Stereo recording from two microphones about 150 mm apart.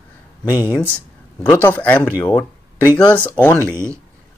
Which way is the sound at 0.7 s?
10° left (ahead or behind).